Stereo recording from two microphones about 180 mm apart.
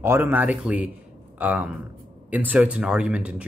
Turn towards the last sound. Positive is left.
turn(degrees=-5)  # may be behind; listen again after turning